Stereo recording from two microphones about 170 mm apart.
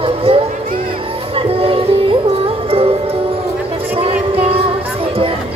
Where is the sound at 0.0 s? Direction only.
30° right (ahead or behind).